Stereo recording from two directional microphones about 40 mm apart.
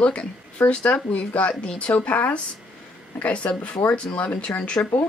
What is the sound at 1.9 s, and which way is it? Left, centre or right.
A woman's voice, left.